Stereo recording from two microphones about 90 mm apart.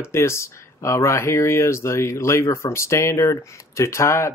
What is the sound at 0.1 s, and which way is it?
Speech, 30° left (ahead or behind).